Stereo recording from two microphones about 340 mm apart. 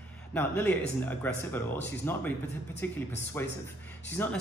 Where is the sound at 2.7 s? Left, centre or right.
Centre.